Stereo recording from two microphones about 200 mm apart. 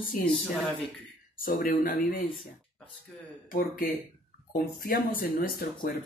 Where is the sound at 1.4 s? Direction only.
45° left (ahead or behind).